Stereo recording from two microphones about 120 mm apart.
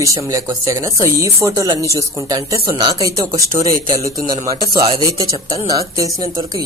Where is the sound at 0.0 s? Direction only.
25° right (ahead or behind).